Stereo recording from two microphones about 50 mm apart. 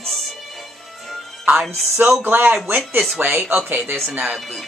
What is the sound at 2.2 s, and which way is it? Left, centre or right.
Speech, right.